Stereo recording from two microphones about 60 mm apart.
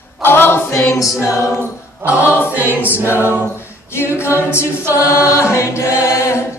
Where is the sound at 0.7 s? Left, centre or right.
Left.